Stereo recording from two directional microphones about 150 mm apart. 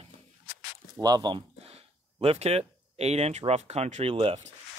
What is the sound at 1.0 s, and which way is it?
Speech, 25° right (ahead or behind).